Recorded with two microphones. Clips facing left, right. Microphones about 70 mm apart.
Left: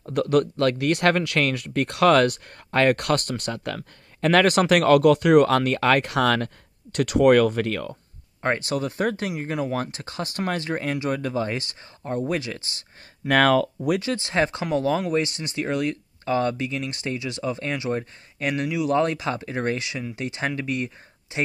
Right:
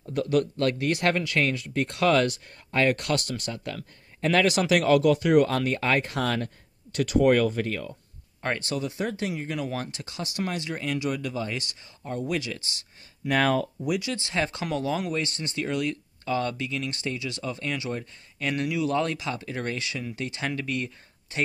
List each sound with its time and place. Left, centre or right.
0.0 s speech: left
8.4 s speech: left
8.7 s speech: left
13.3 s speech: left
13.8 s speech: left
14.1 s speech: left